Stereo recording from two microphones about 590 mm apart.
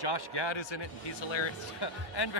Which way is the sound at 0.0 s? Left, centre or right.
Left.